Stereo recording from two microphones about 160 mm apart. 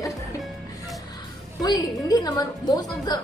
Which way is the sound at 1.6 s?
25° left (ahead or behind).